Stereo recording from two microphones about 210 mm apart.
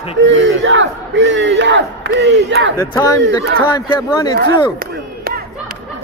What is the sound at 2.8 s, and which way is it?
Speech, 15° left (ahead or behind).